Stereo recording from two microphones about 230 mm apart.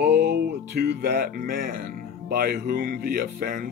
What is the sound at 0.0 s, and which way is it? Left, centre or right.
Speech, right.